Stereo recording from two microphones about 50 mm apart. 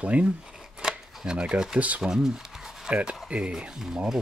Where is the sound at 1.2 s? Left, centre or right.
Centre.